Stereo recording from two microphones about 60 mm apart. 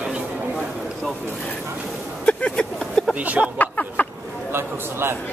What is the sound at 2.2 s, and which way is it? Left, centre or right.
Vehicle, centre.